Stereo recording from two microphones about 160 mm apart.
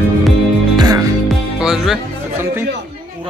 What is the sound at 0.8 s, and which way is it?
Music, 20° right (ahead or behind).